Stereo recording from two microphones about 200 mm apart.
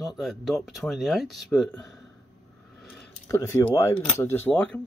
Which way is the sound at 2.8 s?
Centre (ahead or behind).